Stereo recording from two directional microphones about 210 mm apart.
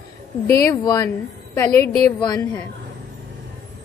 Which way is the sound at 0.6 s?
20° left (ahead or behind).